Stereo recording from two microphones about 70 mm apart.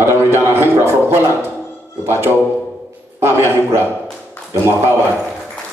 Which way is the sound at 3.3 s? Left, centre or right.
Right.